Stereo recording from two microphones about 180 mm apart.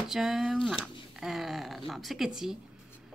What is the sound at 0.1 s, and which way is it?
Speech, centre (ahead or behind).